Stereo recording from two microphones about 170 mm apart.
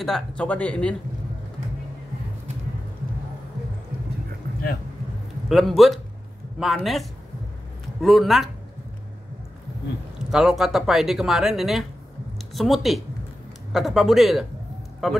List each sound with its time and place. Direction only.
0.0 s speech: 5° left (ahead or behind)
5.5 s speech: centre (ahead or behind)
10.1 s speech: 5° right (ahead or behind)